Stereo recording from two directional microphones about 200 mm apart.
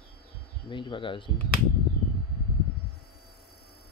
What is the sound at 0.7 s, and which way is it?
Speech, 25° left (ahead or behind).